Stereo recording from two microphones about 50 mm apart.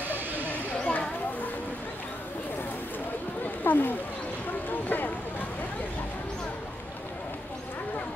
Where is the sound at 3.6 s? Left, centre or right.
Left.